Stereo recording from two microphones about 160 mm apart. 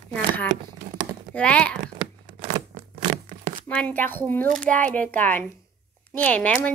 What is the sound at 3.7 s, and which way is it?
Speech, 10° left (ahead or behind).